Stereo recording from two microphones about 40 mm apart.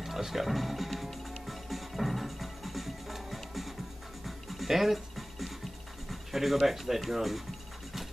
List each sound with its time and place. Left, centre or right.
0.0 s music: centre
6.0 s speech: centre